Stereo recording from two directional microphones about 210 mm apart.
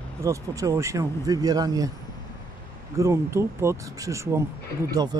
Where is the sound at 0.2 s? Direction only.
15° right (ahead or behind).